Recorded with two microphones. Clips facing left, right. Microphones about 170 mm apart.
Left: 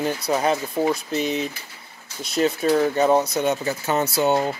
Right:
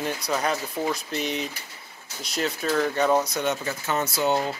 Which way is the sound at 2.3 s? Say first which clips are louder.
Left 6 dB; 20° left (ahead or behind).